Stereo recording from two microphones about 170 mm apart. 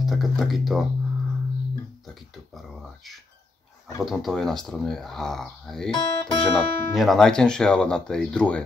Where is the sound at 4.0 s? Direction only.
Centre (ahead or behind).